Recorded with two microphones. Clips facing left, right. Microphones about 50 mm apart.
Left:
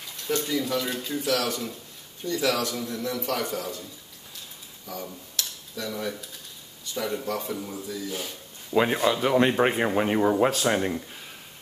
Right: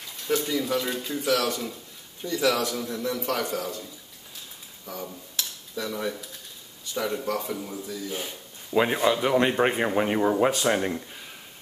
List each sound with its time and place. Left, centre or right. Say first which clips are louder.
0.1 s speech: right 1 dB; centre
4.8 s speech: even; centre
5.3 s cutlery: right 1 dB; centre
7.0 s speech: right 1 dB; centre
8.1 s speech: even; centre
8.7 s speech: even; centre